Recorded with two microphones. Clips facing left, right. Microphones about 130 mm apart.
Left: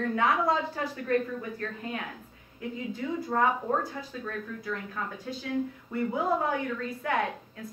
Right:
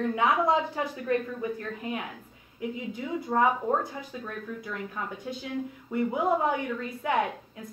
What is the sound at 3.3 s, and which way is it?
A woman's voice, 20° right (ahead or behind).